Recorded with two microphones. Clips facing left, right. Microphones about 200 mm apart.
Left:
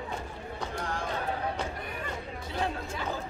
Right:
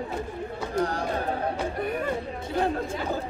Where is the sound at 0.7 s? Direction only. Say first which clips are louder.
Right 9 dB; 40° right (ahead or behind).